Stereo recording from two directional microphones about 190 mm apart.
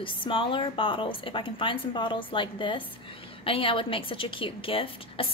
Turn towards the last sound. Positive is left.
turn(degrees=30)  # may be behind; listen again after turning